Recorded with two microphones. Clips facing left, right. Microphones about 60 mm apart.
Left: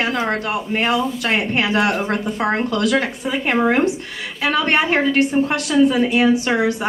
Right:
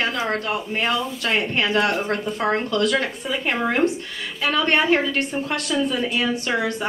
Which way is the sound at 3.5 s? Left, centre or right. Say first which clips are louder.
Left 6 dB; left.